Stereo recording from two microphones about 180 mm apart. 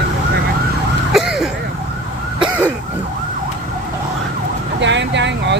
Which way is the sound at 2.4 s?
5° right (ahead or behind).